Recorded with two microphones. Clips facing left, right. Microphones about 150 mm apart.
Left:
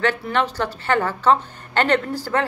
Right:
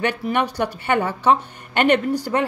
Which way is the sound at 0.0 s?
15° right (ahead or behind).